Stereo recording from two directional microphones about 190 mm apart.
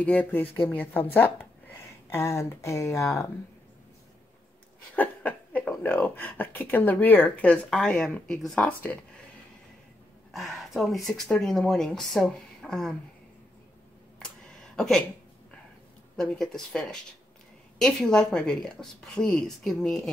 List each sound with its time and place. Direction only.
0.0 s speech: 5° left (ahead or behind)
4.9 s speech: 10° left (ahead or behind)
10.3 s speech: centre (ahead or behind)
14.8 s speech: 5° left (ahead or behind)
16.2 s speech: 5° left (ahead or behind)